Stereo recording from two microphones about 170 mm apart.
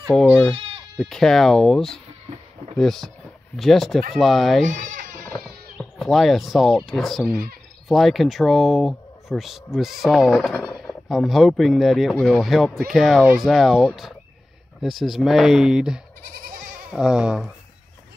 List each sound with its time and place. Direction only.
0.1 s speech: 5° left (ahead or behind)
4.6 s bleat: 50° right (ahead or behind)
5.8 s speech: centre (ahead or behind)